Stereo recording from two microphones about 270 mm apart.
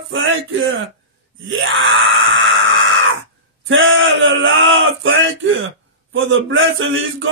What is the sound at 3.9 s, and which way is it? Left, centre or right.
Speech, right.